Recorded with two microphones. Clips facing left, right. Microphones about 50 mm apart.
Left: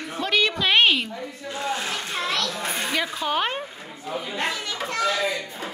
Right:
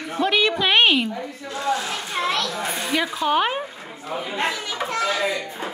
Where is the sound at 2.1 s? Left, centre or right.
Centre.